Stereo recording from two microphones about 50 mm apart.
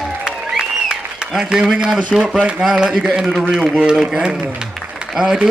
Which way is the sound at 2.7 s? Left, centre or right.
Centre.